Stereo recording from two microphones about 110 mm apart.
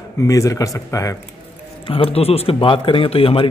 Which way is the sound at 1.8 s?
55° left (ahead or behind).